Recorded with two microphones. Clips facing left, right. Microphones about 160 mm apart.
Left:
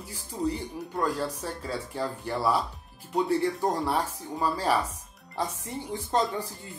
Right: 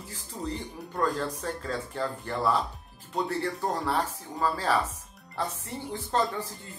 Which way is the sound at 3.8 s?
15° left (ahead or behind).